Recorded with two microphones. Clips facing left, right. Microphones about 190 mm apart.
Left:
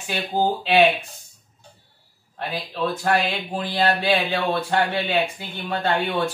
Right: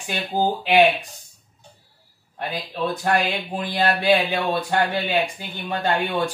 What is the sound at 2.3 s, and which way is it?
Speech, 15° right (ahead or behind).